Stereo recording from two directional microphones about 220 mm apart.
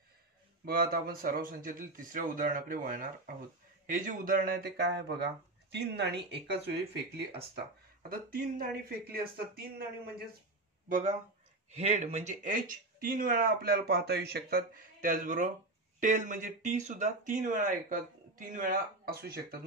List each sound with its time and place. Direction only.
0.7 s speech: 40° right (ahead or behind)
8.1 s speech: 40° right (ahead or behind)
10.9 s speech: 35° right (ahead or behind)